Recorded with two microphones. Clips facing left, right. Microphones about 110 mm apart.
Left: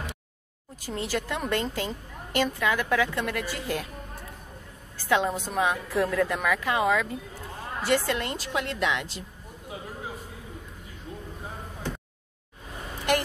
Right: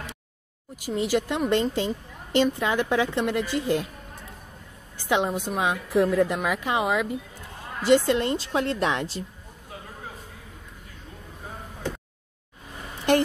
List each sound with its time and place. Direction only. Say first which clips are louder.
0.7 s speech: right 6 dB; 15° right (ahead or behind)
4.9 s a woman's voice: right 1 dB; 20° right (ahead or behind); by 9.2 s 35° right (ahead or behind)